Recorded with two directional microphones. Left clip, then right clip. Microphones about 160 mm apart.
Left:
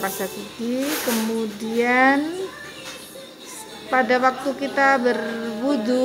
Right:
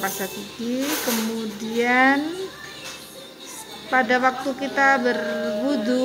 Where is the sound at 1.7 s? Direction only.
Centre (ahead or behind).